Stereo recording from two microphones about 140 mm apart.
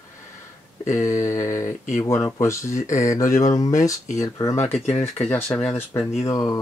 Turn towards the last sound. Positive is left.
turn(degrees=25)  # may be behind; listen again after turning